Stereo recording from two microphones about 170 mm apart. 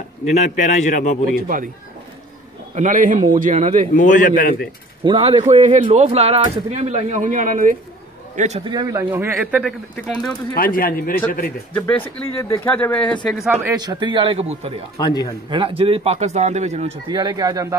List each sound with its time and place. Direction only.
0.2 s a man's voice: 40° left (ahead or behind)
2.7 s a man's voice: 45° right (ahead or behind)
3.9 s a man's voice: 50° left (ahead or behind)
5.0 s speech: 30° right (ahead or behind)
5.4 s a man's voice: 45° right (ahead or behind)
8.4 s speech: 40° right (ahead or behind)
8.6 s a man's voice: 25° right (ahead or behind)
9.1 s speech: 15° right (ahead or behind)
10.5 s speech: 55° left (ahead or behind)
11.7 s speech: 10° left (ahead or behind)
13.6 s a man's voice: 20° right (ahead or behind); by 14.7 s 35° right (ahead or behind)
15.0 s a man's voice: 25° left (ahead or behind)
15.5 s speech: 30° right (ahead or behind)